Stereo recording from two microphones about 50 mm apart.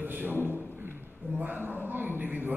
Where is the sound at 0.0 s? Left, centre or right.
Right.